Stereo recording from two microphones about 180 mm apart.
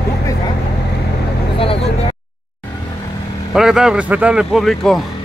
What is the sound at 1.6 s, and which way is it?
Vehicle, 30° left (ahead or behind).